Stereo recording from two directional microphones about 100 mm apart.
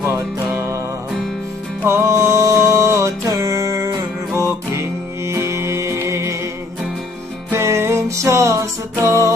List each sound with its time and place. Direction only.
0.0 s music: 30° right (ahead or behind)
1.9 s music: 30° right (ahead or behind)
7.5 s music: 25° right (ahead or behind)